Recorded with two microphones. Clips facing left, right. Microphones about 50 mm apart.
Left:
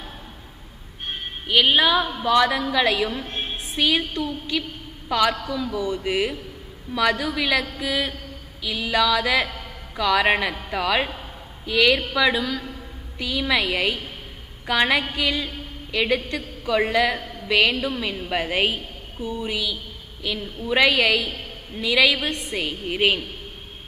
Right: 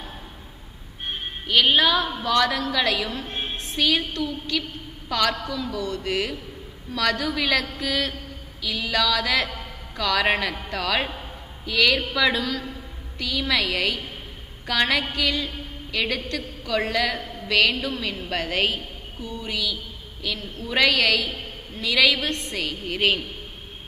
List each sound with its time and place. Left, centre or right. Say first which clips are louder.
1.5 s a woman's voice: left 1 dB; centre